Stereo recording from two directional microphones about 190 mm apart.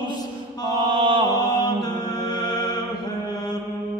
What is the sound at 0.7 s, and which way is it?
Mantra, 25° right (ahead or behind).